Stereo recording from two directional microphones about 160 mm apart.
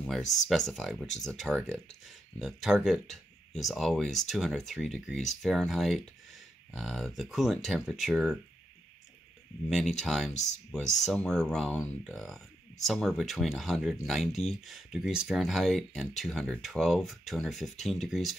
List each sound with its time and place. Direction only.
0.0 s speech: centre (ahead or behind)
9.7 s speech: centre (ahead or behind)
10.3 s speech: 45° left (ahead or behind)
10.7 s speech: centre (ahead or behind)